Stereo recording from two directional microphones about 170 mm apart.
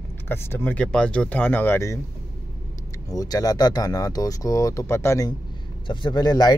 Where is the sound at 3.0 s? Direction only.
20° left (ahead or behind).